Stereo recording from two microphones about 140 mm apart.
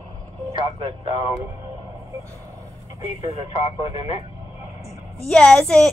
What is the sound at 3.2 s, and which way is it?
Speech, 50° left (ahead or behind).